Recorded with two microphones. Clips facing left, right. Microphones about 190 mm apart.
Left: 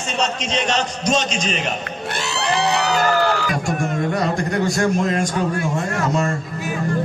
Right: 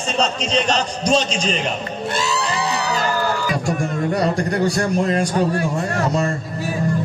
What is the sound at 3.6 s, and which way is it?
A man's voice, 35° right (ahead or behind).